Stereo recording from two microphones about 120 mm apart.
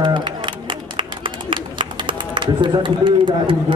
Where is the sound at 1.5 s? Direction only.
40° right (ahead or behind).